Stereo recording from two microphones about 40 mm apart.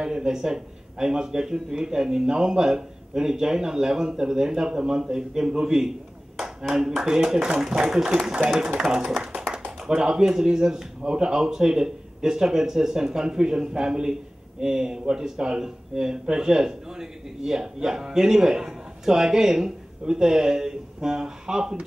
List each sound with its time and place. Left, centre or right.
0.0 s speech: centre
7.1 s speech: centre